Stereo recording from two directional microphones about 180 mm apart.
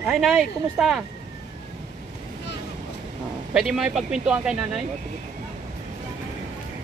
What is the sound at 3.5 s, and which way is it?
Speech, 5° right (ahead or behind).